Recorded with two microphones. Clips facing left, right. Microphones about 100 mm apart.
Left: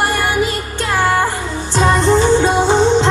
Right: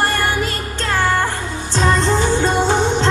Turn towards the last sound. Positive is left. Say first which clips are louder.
# left 4 dB
turn(degrees=20)  # may be behind; listen again after turning